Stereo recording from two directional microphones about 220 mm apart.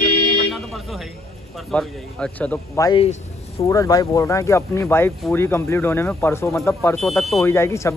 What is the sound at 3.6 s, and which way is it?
Speech, 15° left (ahead or behind).